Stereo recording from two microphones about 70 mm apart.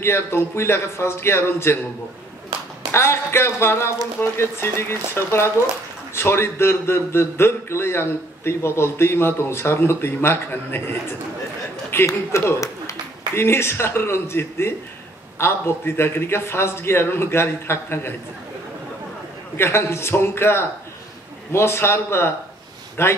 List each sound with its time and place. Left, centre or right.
0.0 s a man's voice: left
2.9 s a man's voice: left
11.9 s a man's voice: left
13.3 s a man's voice: left
19.5 s a man's voice: left